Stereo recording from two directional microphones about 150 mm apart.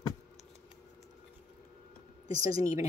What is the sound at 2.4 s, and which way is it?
Speech, 25° right (ahead or behind).